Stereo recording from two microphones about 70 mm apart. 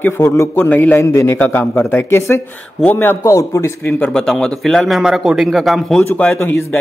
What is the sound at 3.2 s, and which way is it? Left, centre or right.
Speech, left.